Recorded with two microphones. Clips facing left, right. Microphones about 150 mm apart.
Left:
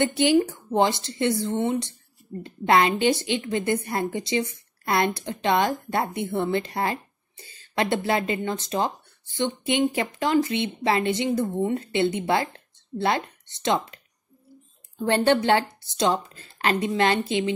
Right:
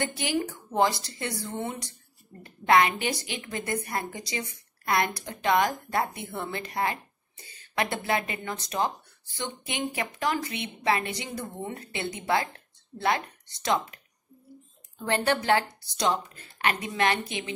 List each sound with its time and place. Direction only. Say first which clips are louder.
0.0 s a woman's voice: left 9 dB; 25° left (ahead or behind)
15.0 s a woman's voice: left 5 dB; 25° left (ahead or behind)